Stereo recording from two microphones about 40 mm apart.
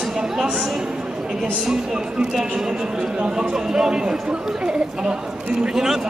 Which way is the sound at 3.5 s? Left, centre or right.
Centre.